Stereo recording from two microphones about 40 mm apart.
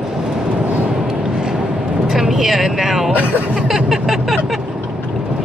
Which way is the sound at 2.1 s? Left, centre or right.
Centre.